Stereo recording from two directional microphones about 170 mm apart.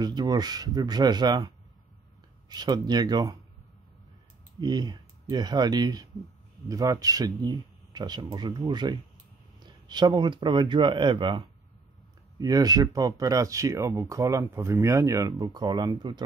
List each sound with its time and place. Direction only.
0.0 s speech: 25° right (ahead or behind)
2.5 s speech: 25° right (ahead or behind)
4.6 s speech: 25° right (ahead or behind)